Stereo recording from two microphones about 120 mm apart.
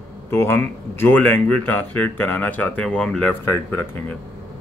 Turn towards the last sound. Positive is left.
turn(degrees=20)  # may be behind; listen again after turning